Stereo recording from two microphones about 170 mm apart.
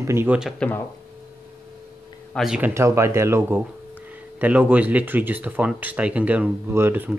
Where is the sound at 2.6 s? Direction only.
15° right (ahead or behind).